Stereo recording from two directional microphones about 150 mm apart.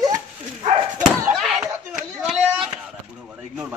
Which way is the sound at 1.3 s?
Centre (ahead or behind).